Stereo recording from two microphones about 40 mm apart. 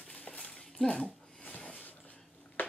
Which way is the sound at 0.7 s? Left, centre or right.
Centre.